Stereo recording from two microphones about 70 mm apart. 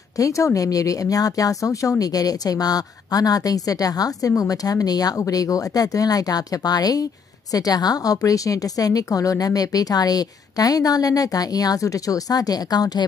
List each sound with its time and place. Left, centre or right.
0.2 s a woman's voice: left
5.1 s a woman's voice: left